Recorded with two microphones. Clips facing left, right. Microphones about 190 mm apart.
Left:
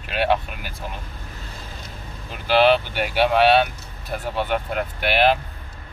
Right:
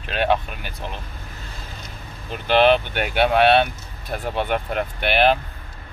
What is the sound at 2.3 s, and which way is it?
Speech, 5° left (ahead or behind).